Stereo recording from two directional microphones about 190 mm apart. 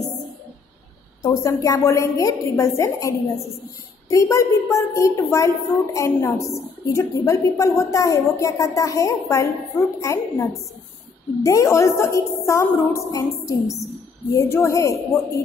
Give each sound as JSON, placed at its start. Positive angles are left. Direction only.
{"t": 1.2, "sound": "a woman's voice", "side_deg": 15}